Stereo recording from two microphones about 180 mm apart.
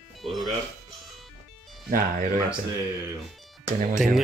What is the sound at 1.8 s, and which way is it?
Speech, 50° right (ahead or behind).